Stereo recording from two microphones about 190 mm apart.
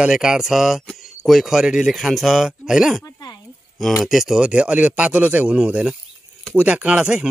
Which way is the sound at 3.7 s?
Centre (ahead or behind).